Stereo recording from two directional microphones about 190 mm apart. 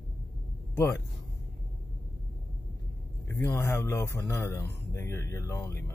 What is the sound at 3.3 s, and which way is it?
Speech, 10° left (ahead or behind).